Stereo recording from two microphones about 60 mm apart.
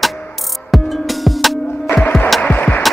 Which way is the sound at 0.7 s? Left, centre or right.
Centre.